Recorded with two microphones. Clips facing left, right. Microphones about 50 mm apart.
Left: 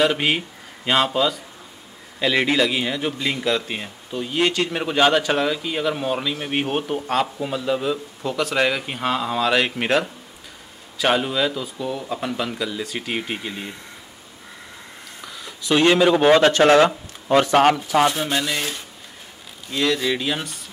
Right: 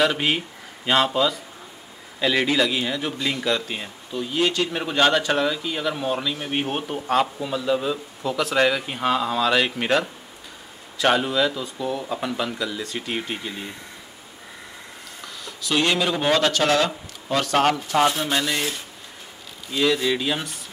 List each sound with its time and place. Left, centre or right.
0.0 s speech: centre
2.4 s speech: centre
15.7 s speech: left
17.8 s speech: centre